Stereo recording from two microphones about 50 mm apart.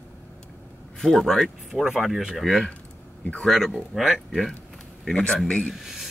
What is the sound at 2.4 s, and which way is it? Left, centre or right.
Speech, centre.